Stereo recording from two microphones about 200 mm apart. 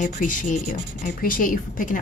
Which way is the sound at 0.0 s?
40° left (ahead or behind).